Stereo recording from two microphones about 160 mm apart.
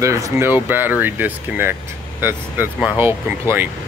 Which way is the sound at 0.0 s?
15° right (ahead or behind).